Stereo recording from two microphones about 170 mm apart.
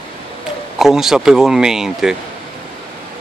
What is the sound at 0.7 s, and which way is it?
Speech, centre (ahead or behind).